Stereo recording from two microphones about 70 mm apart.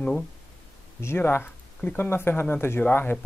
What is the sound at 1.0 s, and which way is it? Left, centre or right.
Speech, left.